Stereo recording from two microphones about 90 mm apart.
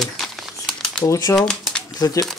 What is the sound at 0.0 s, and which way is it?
Crumpling, centre (ahead or behind).